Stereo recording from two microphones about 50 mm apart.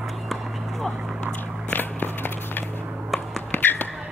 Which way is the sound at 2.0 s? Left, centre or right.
Left.